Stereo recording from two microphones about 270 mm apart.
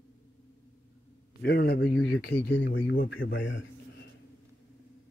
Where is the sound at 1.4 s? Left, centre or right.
Left.